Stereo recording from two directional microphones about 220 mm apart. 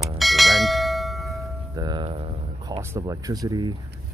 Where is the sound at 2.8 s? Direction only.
15° right (ahead or behind).